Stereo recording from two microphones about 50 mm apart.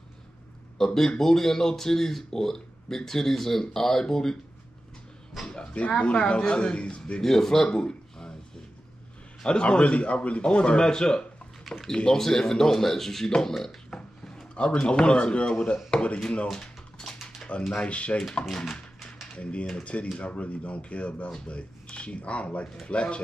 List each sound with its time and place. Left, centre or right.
0.7 s speech: centre
5.5 s a man's voice: centre
7.2 s speech: centre
9.4 s a man's voice: centre
13.8 s a man's voice: centre
16.5 s a sound: centre
17.7 s a man's voice: left
18.6 s a sound: centre
19.3 s a man's voice: left